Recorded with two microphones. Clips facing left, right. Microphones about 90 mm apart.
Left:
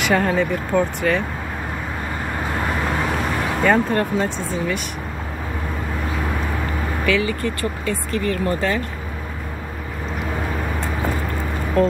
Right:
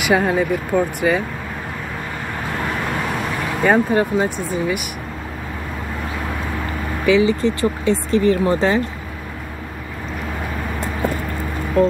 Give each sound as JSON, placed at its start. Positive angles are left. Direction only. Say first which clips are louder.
{"t": 0.0, "sound": "speech", "louder": "right 1 dB", "side_deg": -10}
{"t": 3.6, "sound": "speech", "louder": "right 3 dB", "side_deg": -10}
{"t": 7.1, "sound": "speech", "louder": "right 7 dB", "side_deg": -20}
{"t": 11.8, "sound": "speech", "louder": "right 2 dB", "side_deg": 0}